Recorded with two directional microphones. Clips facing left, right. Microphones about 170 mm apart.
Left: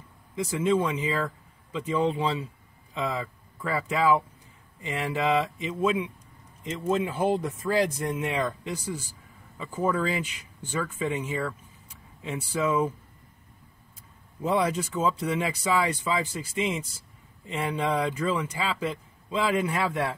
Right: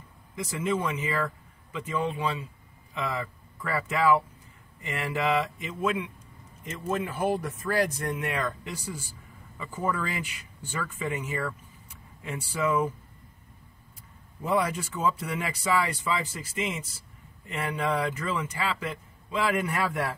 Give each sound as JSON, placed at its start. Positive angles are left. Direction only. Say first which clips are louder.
{"t": 0.4, "sound": "speech", "louder": "left 4 dB", "side_deg": 15}
{"t": 9.9, "sound": "speech", "louder": "left 5 dB", "side_deg": 20}
{"t": 14.4, "sound": "speech", "louder": "left 2 dB", "side_deg": 20}